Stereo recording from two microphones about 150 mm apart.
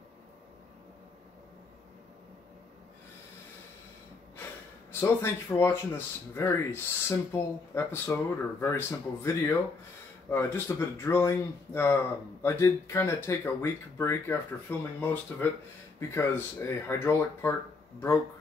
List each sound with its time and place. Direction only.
5.0 s speech: 20° left (ahead or behind)